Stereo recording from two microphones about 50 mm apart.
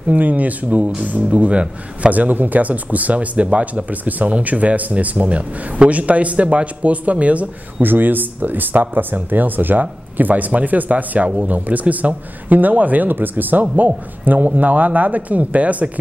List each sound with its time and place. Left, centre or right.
0.1 s speech: right
7.8 s speech: right